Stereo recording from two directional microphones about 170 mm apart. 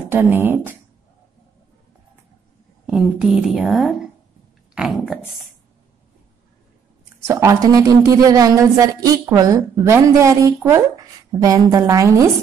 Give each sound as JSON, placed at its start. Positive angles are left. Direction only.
{"t": 0.1, "sound": "speech", "side_deg": -10}
{"t": 2.9, "sound": "a woman's voice", "side_deg": -5}
{"t": 7.2, "sound": "a woman's voice", "side_deg": -15}